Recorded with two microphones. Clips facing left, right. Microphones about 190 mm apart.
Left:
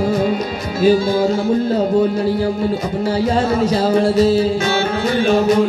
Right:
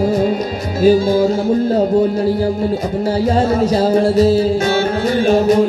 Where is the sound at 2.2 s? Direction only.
40° right (ahead or behind).